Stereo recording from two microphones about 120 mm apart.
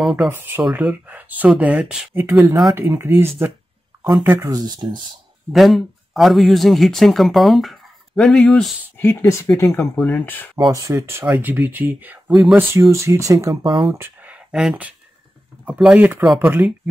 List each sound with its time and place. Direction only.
0.0 s speech: centre (ahead or behind)
0.3 s speech: 20° right (ahead or behind)
0.6 s speech: 5° right (ahead or behind)
2.2 s speech: 25° right (ahead or behind)
5.5 s speech: centre (ahead or behind)
8.9 s speech: 15° left (ahead or behind)
9.7 s speech: 5° left (ahead or behind)
10.7 s speech: 25° right (ahead or behind)
12.3 s speech: 5° right (ahead or behind)
12.9 s speech: 25° right (ahead or behind)
13.9 s speech: 15° right (ahead or behind)